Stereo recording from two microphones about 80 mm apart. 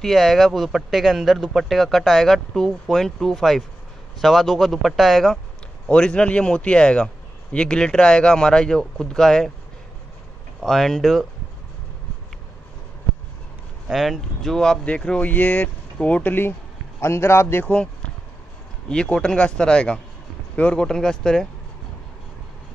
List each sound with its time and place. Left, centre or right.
0.0 s a man's voice: centre
10.6 s a man's voice: centre
13.8 s a man's voice: centre; by 17.6 s left
17.6 s speech: centre